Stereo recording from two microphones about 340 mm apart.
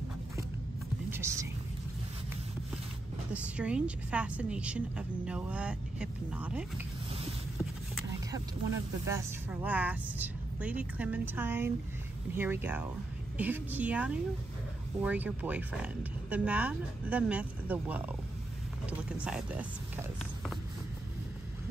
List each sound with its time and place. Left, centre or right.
1.1 s a sound: centre
3.3 s speech: centre
8.3 s speech: centre